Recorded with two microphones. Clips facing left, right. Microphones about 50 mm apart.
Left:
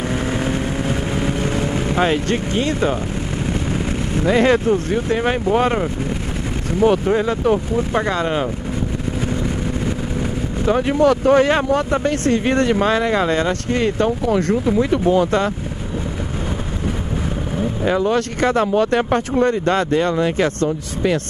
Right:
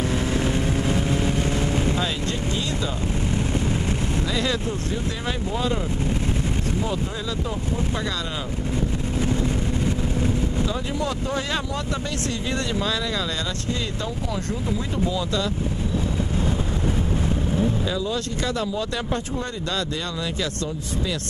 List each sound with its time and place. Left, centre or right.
0.1 s vehicle: left
2.0 s speech: left
4.2 s speech: left
6.8 s speech: left
10.6 s speech: left
11.4 s speech: left
17.8 s speech: left